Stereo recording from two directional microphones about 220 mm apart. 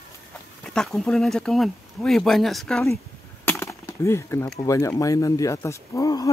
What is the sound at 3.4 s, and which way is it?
Wood, 10° left (ahead or behind).